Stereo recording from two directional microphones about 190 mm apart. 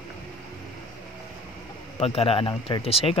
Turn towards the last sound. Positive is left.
turn(degrees=30)  # may be behind; listen again after turning